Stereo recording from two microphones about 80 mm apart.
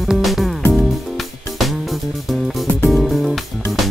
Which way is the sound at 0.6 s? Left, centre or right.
Left.